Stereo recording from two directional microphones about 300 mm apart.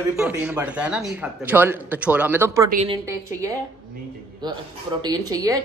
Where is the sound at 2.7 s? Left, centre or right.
Right.